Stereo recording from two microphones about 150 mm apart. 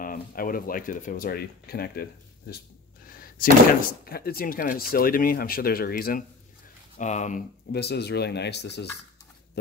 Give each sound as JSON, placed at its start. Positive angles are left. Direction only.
{"t": 0.0, "sound": "speech", "side_deg": 70}
{"t": 3.1, "sound": "a sound", "side_deg": 70}
{"t": 4.0, "sound": "speech", "side_deg": 90}
{"t": 7.0, "sound": "speech", "side_deg": 55}
{"t": 7.7, "sound": "speech", "side_deg": 90}